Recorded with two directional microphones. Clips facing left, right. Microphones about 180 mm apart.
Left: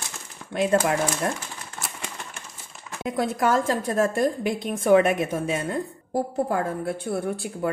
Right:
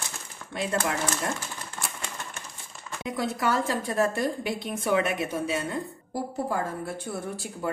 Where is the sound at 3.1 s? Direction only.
50° left (ahead or behind).